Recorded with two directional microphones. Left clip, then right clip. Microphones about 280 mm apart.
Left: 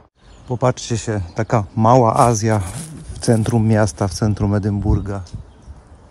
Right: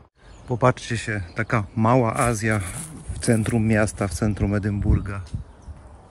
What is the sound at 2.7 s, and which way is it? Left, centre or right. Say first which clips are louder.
Zipper: left 3 dB; centre.